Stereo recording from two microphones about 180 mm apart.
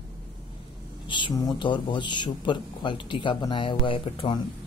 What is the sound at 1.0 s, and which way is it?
Speech, 25° left (ahead or behind).